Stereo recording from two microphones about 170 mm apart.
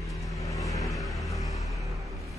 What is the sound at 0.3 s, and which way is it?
Music, 20° left (ahead or behind).